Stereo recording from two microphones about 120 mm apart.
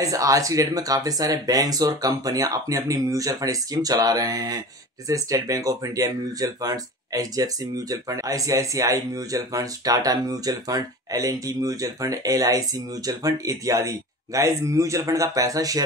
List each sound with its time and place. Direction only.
0.0 s speech: 30° right (ahead or behind)